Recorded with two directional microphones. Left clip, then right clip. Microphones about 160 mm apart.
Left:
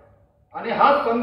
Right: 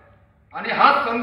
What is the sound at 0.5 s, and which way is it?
Speech, 20° left (ahead or behind).